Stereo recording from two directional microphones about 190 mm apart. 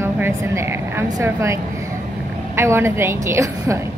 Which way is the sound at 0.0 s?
15° right (ahead or behind).